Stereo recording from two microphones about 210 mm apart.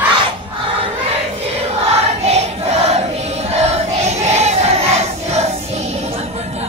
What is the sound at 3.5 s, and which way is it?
Crowd, 30° right (ahead or behind).